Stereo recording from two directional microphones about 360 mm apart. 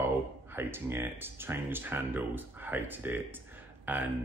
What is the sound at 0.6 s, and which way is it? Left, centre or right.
Speech, centre.